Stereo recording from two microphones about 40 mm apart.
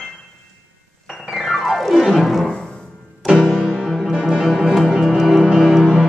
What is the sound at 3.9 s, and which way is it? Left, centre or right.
Music, centre.